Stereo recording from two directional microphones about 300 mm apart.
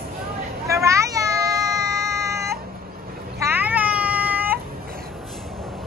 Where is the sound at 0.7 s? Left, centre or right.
Centre.